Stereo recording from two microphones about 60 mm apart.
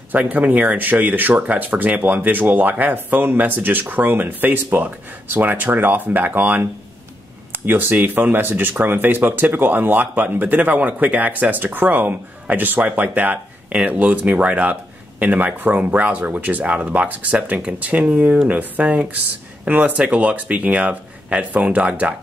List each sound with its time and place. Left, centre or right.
0.1 s speech: right